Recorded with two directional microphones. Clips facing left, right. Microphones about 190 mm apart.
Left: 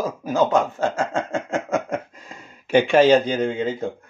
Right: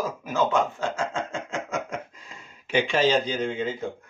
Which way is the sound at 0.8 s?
45° left (ahead or behind).